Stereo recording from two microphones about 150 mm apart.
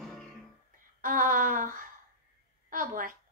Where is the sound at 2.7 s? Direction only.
65° right (ahead or behind).